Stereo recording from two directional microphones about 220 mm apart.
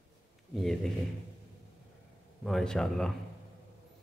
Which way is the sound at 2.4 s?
Centre (ahead or behind).